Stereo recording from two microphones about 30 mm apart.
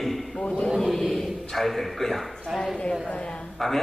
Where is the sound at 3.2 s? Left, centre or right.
Left.